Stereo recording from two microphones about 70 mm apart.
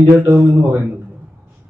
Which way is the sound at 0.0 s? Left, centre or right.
Right.